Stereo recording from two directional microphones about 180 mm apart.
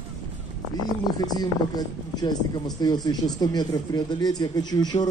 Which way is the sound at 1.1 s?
20° left (ahead or behind).